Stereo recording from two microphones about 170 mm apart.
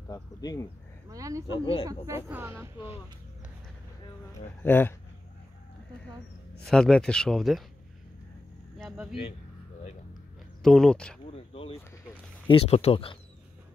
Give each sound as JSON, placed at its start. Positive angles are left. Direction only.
{"t": 0.1, "sound": "speech", "side_deg": 20}
{"t": 1.0, "sound": "speech", "side_deg": -20}
{"t": 1.6, "sound": "speech", "side_deg": 30}
{"t": 1.9, "sound": "speech", "side_deg": -15}
{"t": 4.3, "sound": "speech", "side_deg": 10}
{"t": 6.6, "sound": "speech", "side_deg": 5}
{"t": 8.7, "sound": "a sound", "side_deg": -5}
{"t": 10.6, "sound": "speech", "side_deg": 0}
{"t": 11.5, "sound": "a sound", "side_deg": 35}
{"t": 12.4, "sound": "speech", "side_deg": 35}